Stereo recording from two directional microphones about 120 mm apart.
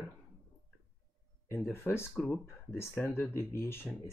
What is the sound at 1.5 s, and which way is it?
Speech, 15° left (ahead or behind).